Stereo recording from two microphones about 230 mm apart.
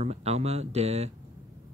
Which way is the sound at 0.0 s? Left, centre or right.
Right.